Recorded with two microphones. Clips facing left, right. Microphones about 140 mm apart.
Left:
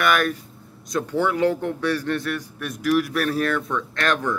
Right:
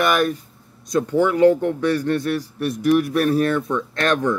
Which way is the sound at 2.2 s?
30° right (ahead or behind).